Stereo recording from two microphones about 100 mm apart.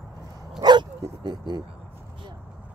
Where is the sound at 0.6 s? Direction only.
45° right (ahead or behind).